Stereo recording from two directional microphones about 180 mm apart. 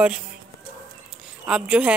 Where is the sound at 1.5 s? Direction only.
5° right (ahead or behind).